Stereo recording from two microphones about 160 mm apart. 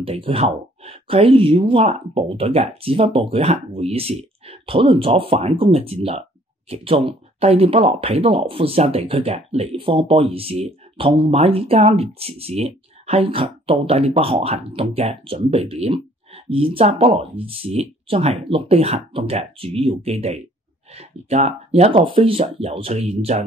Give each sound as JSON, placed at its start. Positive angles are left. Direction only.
{"t": 0.0, "sound": "speech", "side_deg": -35}